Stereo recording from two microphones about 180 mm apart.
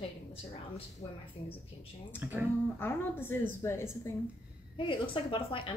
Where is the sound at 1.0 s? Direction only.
30° left (ahead or behind).